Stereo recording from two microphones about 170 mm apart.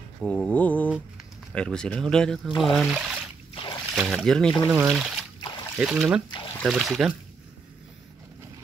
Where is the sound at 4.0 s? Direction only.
Centre (ahead or behind).